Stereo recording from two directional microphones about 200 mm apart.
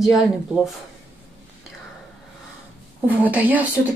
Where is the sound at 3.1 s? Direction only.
10° right (ahead or behind).